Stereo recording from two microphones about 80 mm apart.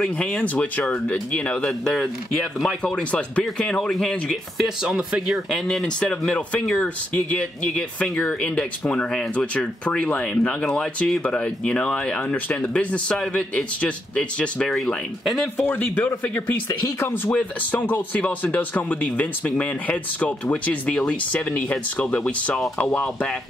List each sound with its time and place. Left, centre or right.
0.4 s speech: centre
4.8 s speech: centre
14.7 s speech: centre
15.5 s speech: left
17.3 s speech: centre